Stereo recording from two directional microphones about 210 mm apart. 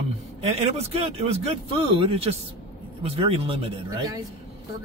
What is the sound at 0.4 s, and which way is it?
Speech, 30° right (ahead or behind).